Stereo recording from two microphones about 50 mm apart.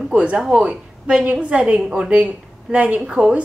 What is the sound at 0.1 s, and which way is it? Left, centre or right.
Speech, right.